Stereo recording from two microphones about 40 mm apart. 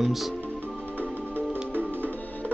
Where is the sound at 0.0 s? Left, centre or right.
Centre.